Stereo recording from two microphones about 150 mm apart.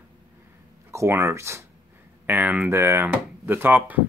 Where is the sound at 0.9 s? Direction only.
20° right (ahead or behind).